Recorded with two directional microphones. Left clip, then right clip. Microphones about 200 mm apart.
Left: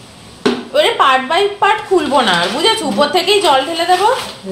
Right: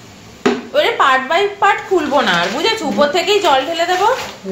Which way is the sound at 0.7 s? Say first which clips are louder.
Left 2 dB; 5° left (ahead or behind).